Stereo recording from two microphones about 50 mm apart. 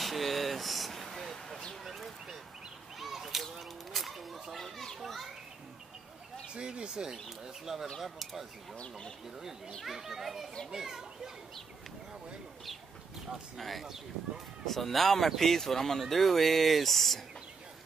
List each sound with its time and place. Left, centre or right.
0.0 s a sound: centre
1.9 s a sound: centre
3.0 s children playing: centre
6.5 s speech: centre
8.7 s speech: centre
9.8 s a child's voice: centre
13.6 s speech: centre